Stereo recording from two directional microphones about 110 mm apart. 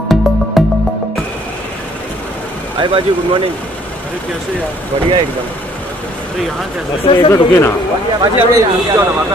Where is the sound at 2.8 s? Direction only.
50° right (ahead or behind).